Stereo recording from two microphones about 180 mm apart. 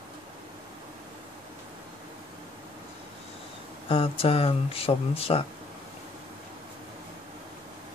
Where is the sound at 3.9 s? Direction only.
30° left (ahead or behind).